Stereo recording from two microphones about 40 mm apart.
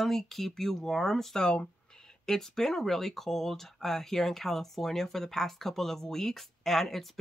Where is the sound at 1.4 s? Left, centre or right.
Centre.